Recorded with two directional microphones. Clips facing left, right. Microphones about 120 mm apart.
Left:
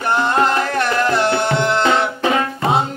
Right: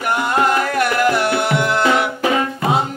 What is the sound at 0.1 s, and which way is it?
Music, 30° left (ahead or behind).